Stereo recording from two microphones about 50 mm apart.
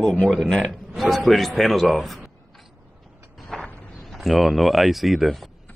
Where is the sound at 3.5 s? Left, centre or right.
Centre.